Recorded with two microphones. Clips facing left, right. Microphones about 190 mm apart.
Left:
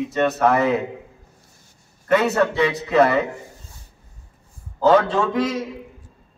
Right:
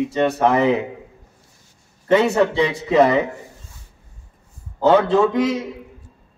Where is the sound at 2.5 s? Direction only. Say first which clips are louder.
Right 1 dB; 25° right (ahead or behind).